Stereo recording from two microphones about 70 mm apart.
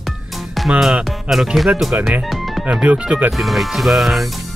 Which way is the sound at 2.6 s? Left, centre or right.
Centre.